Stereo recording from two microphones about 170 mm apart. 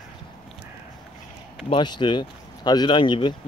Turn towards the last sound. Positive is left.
turn(degrees=30)  # may be behind; listen again after turning